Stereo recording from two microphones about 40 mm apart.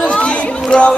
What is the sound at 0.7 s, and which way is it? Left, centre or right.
Music, left.